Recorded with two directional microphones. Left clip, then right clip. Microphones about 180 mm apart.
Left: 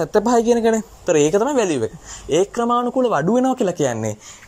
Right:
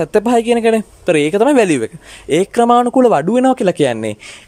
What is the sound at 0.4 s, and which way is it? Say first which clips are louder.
Speech: right 3 dB; 20° right (ahead or behind).